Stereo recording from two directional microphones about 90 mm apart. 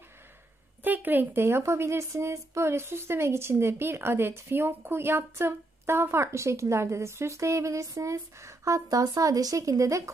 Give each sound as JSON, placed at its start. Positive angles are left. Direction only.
{"t": 0.8, "sound": "a woman's voice", "side_deg": -20}